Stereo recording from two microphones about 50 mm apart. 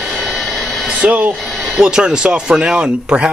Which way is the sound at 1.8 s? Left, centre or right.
Centre.